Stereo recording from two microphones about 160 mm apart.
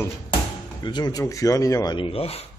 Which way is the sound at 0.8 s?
25° left (ahead or behind).